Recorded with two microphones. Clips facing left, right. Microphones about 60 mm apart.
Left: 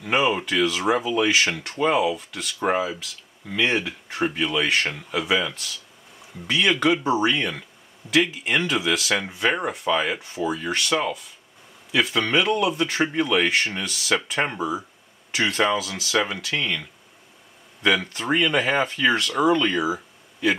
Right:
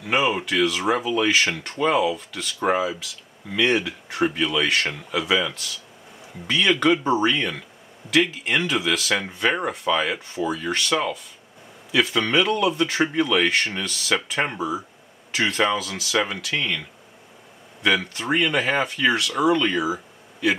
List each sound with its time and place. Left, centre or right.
0.0 s speech: centre
0.8 s speech: centre
14.4 s speech: centre
15.3 s speech: centre
15.9 s speech: centre
16.2 s speech: centre
17.8 s speech: centre